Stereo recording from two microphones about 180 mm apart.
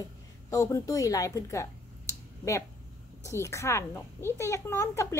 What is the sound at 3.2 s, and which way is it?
A woman's voice, 15° left (ahead or behind).